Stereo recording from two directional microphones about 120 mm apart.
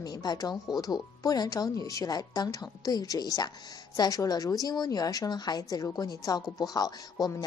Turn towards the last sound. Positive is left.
turn(degrees=30)  # may be behind; listen again after turning